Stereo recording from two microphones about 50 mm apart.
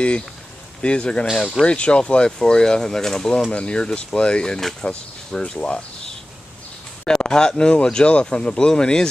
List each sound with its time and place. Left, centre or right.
0.8 s speech: left
1.3 s speech: centre
1.7 s speech: left